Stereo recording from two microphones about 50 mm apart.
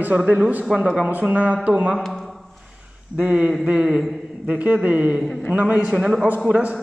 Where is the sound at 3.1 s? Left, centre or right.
Right.